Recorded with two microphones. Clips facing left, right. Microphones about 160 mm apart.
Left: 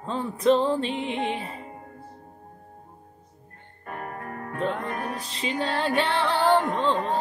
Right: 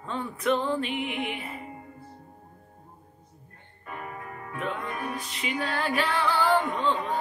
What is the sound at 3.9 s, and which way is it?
Music, 50° left (ahead or behind).